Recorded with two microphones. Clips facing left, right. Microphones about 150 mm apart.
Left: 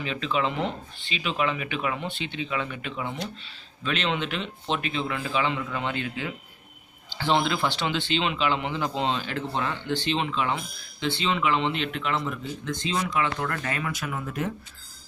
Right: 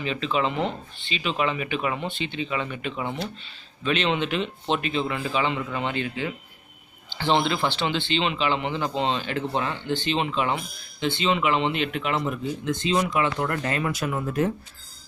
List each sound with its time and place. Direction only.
0.0 s speech: centre (ahead or behind)
9.5 s speech: 5° right (ahead or behind); by 14.4 s 35° right (ahead or behind)